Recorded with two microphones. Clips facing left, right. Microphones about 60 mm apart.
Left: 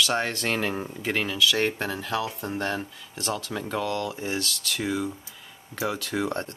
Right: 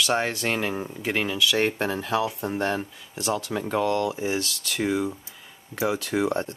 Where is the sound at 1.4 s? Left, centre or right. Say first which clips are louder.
Right 1 dB; right.